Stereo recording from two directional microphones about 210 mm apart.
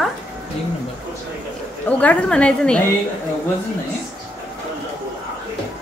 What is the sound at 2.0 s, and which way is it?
Speech, 5° left (ahead or behind).